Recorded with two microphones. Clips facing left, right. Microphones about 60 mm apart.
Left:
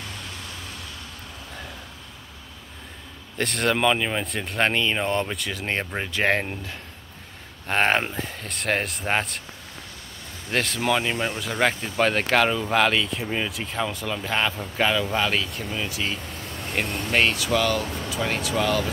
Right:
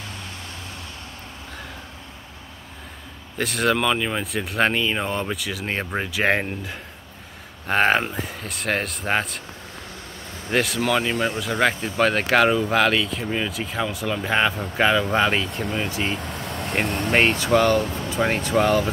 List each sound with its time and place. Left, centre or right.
3.3 s speech: centre
10.5 s speech: centre
16.2 s vehicle: right
16.8 s speech: right
17.1 s speech: centre
17.4 s speech: right